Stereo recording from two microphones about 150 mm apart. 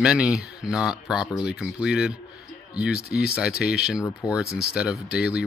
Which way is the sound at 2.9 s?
90° left.